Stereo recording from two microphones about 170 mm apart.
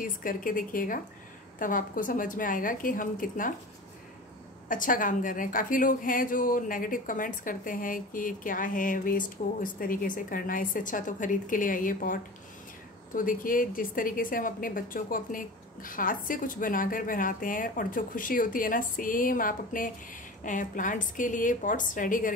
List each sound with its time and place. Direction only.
0.0 s a woman's voice: 55° left (ahead or behind)
4.6 s a woman's voice: 50° left (ahead or behind)